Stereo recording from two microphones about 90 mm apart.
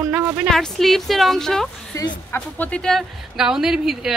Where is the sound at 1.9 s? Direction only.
35° left (ahead or behind).